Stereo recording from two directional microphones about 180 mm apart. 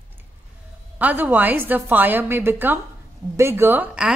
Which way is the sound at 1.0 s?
10° right (ahead or behind).